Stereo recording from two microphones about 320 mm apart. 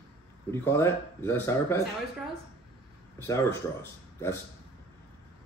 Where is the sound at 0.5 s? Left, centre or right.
Centre.